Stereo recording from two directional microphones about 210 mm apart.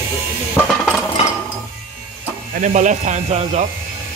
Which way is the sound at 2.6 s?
35° right (ahead or behind).